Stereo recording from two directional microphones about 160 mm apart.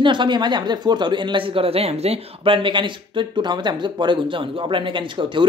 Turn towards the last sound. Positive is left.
turn(degrees=-30)  # may be behind; listen again after turning